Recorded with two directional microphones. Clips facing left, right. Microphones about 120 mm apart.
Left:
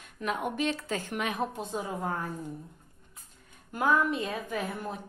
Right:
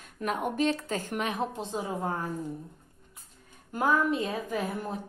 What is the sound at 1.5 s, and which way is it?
Speech, 30° right (ahead or behind).